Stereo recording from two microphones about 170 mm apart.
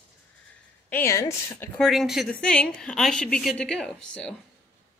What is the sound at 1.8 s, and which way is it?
A woman's voice, centre (ahead or behind).